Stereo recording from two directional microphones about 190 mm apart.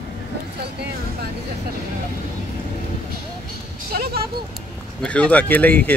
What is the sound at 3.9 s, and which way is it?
Speech, 50° right (ahead or behind).